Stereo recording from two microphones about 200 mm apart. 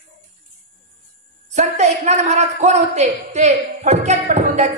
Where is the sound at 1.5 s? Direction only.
35° right (ahead or behind).